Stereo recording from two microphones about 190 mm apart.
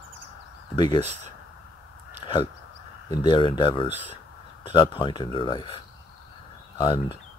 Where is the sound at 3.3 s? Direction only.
25° left (ahead or behind).